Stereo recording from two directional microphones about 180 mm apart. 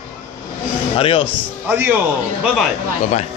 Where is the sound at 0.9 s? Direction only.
30° left (ahead or behind).